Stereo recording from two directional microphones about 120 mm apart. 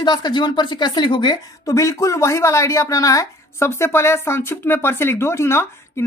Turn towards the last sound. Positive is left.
turn(degrees=20)  # may be behind; listen again after turning